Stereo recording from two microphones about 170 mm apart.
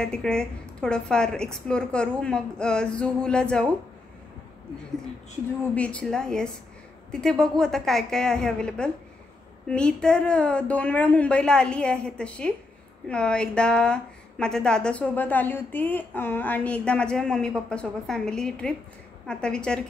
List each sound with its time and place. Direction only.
0.0 s speech: 5° left (ahead or behind)
5.8 s speech: 5° left (ahead or behind)